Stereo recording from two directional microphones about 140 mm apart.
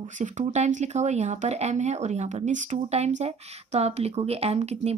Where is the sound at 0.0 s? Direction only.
55° right (ahead or behind).